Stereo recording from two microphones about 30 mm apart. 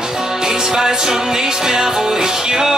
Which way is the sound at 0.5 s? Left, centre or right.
Centre.